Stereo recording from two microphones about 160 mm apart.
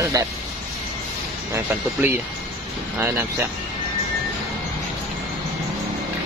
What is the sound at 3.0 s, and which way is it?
Speech, 10° right (ahead or behind).